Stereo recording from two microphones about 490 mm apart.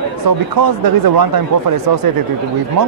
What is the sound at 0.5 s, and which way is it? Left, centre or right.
Speech, right.